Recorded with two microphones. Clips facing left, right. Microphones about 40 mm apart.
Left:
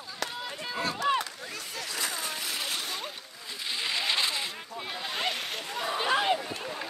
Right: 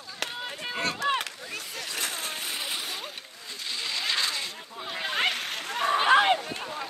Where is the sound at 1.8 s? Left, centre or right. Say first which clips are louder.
Even; right.